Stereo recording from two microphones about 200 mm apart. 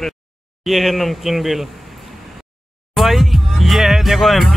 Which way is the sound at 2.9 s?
Centre (ahead or behind).